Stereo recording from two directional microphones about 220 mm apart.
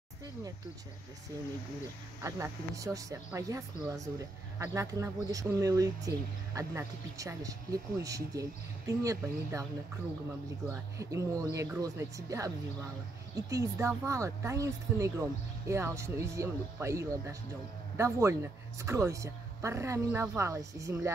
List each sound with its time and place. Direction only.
2.2 s speech: 15° right (ahead or behind)
10.7 s speech: 15° right (ahead or behind)